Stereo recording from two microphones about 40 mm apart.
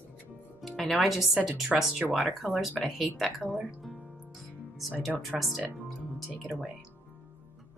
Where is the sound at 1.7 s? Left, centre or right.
Centre.